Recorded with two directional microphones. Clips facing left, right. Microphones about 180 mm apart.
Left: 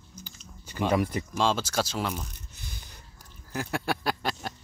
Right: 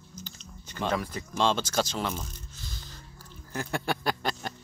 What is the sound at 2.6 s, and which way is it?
Music, 15° left (ahead or behind).